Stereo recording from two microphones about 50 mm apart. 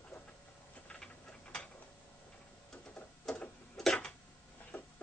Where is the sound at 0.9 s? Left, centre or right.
Centre.